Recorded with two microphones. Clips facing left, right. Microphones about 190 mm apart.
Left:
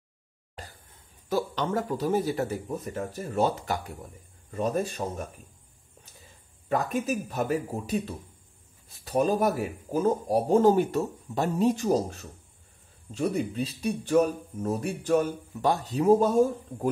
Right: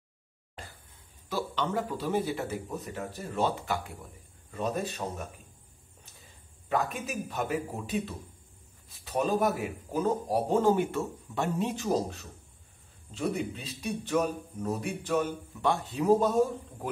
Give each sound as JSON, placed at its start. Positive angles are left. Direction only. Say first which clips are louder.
{"t": 1.3, "sound": "speech", "louder": "left 4 dB", "side_deg": 45}
{"t": 6.7, "sound": "speech", "louder": "left 4 dB", "side_deg": 40}